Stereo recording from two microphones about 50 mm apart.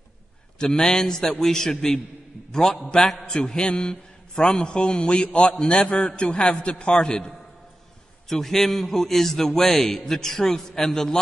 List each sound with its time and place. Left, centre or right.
0.6 s a man's voice: centre